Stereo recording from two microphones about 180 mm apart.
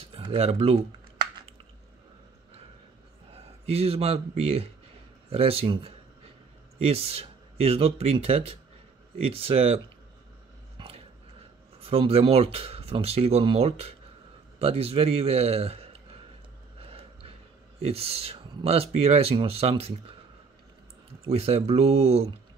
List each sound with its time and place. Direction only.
0.0 s speech: 30° right (ahead or behind)
3.3 s speech: 35° right (ahead or behind)
10.8 s a sound: 30° right (ahead or behind)
11.8 s a man's voice: 35° right (ahead or behind)
16.7 s a sound: 30° right (ahead or behind)
17.7 s speech: 35° right (ahead or behind)
21.3 s speech: 35° right (ahead or behind)